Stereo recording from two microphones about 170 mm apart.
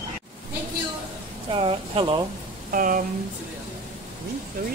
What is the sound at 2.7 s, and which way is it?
Speech, 55° right (ahead or behind).